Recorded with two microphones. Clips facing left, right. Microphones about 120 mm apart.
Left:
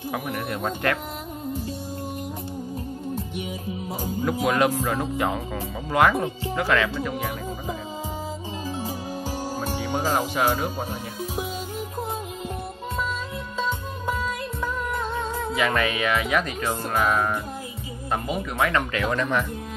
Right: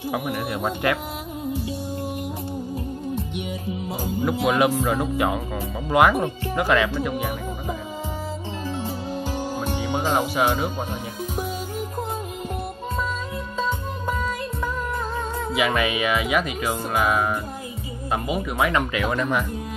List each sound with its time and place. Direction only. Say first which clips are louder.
0.1 s speech: right 2 dB; 5° right (ahead or behind)
4.0 s speech: right 2 dB; 15° right (ahead or behind)
8.8 s music: right 2 dB; 10° left (ahead or behind)
10.4 s speech: right 1 dB; 10° right (ahead or behind)
13.6 s music: right 2 dB; centre (ahead or behind)
15.5 s speech: right 2 dB; 10° right (ahead or behind)